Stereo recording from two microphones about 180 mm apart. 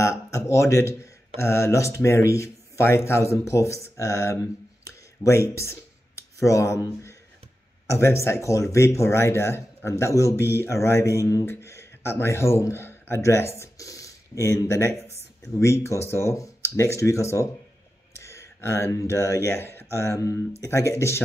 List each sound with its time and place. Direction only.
0.0 s speech: 15° left (ahead or behind)
4.8 s a sound: 15° left (ahead or behind)
7.8 s speech: 15° left (ahead or behind)